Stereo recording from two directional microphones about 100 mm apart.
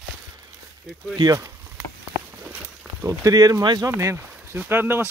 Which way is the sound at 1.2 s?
40° right (ahead or behind).